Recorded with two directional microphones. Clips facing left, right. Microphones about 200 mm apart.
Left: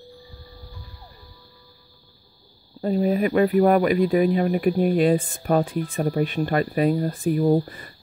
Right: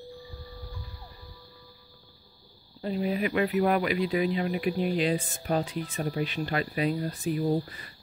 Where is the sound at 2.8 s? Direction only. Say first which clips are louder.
Left 7 dB; 45° left (ahead or behind).